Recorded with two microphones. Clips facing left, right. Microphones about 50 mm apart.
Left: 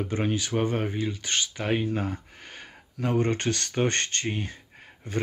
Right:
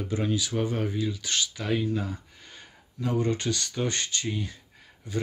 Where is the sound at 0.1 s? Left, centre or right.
Left.